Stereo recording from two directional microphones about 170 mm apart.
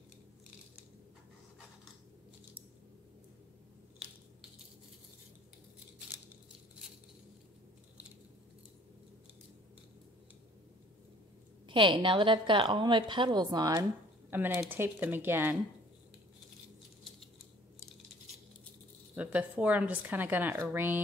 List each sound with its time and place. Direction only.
11.6 s a woman's voice: 30° right (ahead or behind)
14.3 s a woman's voice: 10° right (ahead or behind)
19.1 s a woman's voice: 10° right (ahead or behind)